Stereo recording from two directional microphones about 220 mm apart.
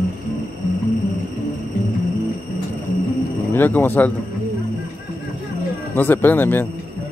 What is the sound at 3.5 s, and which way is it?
Speech, 10° left (ahead or behind).